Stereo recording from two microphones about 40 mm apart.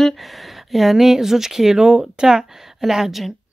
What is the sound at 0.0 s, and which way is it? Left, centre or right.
A woman's voice, centre.